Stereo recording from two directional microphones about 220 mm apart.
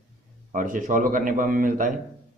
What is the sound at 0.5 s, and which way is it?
Speech, 35° right (ahead or behind).